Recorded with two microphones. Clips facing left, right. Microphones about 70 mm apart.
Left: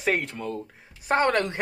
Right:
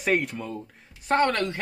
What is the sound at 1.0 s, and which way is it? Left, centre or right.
Speech, centre.